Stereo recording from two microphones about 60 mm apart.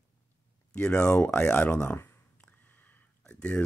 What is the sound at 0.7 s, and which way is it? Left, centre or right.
Speech, centre.